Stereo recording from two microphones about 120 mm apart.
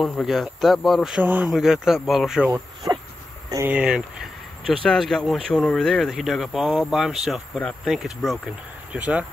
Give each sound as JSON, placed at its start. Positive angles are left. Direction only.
{"t": 0.0, "sound": "speech", "side_deg": 0}
{"t": 1.2, "sound": "speech", "side_deg": -15}
{"t": 1.5, "sound": "speech", "side_deg": -5}
{"t": 2.5, "sound": "insect", "side_deg": -30}
{"t": 3.6, "sound": "speech", "side_deg": -10}
{"t": 4.8, "sound": "speech", "side_deg": 0}